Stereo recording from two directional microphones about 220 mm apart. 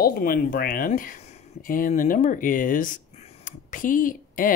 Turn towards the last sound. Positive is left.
turn(degrees=40)  # may be behind; listen again after turning